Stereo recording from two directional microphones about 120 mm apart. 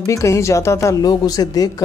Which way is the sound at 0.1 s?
25° left (ahead or behind).